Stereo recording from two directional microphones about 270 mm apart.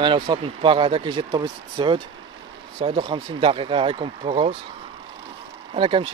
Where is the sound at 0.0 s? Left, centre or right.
Centre.